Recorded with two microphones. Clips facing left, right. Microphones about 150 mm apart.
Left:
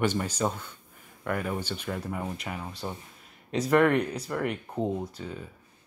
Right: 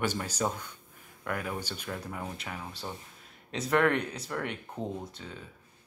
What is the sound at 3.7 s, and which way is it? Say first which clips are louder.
Speech: left 4 dB; centre (ahead or behind).